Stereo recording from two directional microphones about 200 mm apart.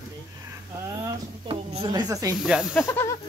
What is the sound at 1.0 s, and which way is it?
Speech, 25° right (ahead or behind).